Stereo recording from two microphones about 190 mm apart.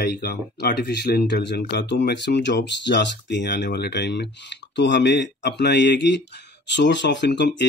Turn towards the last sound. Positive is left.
turn(degrees=65)  # may be behind; listen again after turning